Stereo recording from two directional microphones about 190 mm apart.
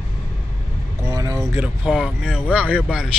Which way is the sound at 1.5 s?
5° right (ahead or behind).